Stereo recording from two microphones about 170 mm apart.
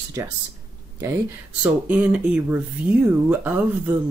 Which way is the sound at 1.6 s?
10° right (ahead or behind).